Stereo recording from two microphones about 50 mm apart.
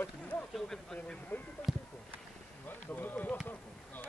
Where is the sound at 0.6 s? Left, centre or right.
Centre.